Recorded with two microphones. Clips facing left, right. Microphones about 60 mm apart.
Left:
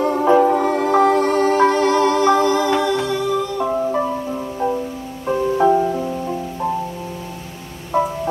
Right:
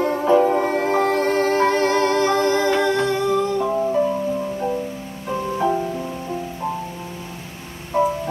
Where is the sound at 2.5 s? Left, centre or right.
Right.